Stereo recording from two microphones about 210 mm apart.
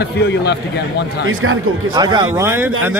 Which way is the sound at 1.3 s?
75° right (ahead or behind).